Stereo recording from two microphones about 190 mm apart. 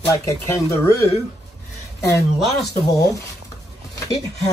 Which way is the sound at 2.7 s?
15° left (ahead or behind).